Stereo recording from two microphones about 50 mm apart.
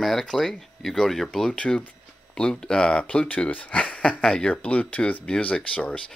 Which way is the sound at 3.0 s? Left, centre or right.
Left.